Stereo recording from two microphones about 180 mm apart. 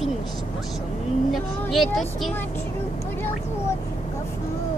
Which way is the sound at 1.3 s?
Centre (ahead or behind).